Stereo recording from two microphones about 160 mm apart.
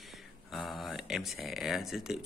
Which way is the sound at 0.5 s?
Centre (ahead or behind).